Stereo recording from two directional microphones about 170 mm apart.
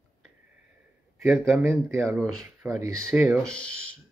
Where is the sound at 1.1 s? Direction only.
Centre (ahead or behind).